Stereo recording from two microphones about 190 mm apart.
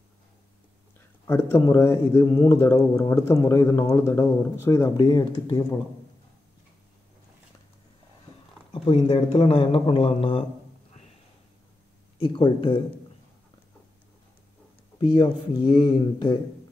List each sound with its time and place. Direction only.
1.2 s speech: 15° left (ahead or behind)
8.7 s speech: 25° left (ahead or behind)
12.2 s speech: 25° left (ahead or behind)
15.0 s speech: 25° left (ahead or behind)